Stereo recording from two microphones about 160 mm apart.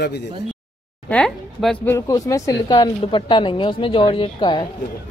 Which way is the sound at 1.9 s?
20° left (ahead or behind).